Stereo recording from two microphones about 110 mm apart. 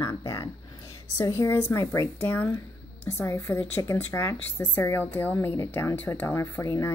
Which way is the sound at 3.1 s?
25° left (ahead or behind).